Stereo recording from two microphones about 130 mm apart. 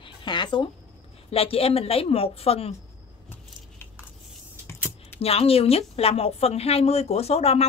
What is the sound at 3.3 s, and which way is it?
Keys jangling, 15° left (ahead or behind).